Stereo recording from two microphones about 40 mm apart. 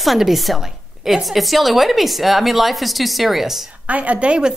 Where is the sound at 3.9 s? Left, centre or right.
Right.